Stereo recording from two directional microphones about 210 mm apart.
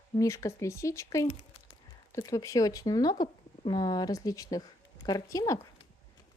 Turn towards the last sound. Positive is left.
turn(degrees=15)  # may be behind; listen again after turning